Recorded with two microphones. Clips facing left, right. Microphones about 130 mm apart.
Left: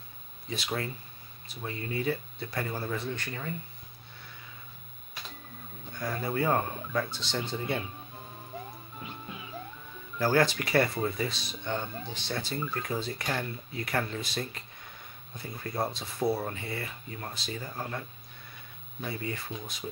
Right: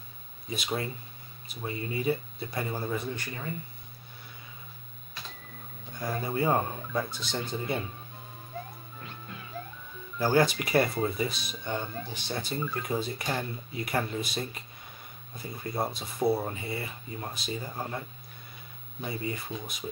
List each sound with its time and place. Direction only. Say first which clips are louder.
0.5 s speech: right 1 dB; 15° right (ahead or behind)
5.9 s speech: right 1 dB; 15° right (ahead or behind)
10.1 s speech: right 1 dB; 15° right (ahead or behind)